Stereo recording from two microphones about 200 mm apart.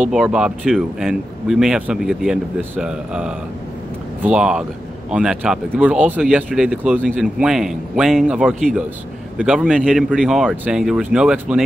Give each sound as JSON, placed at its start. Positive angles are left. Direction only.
{"t": 0.1, "sound": "speech", "side_deg": -5}